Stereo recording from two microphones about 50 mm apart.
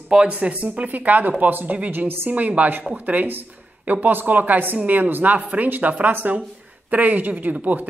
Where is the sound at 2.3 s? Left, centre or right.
Right.